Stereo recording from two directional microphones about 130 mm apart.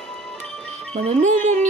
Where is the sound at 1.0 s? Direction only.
65° right (ahead or behind).